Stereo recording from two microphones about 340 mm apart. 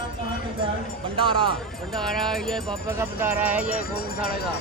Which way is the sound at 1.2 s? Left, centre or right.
Centre.